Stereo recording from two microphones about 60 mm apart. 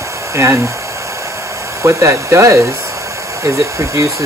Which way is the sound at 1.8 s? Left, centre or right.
Right.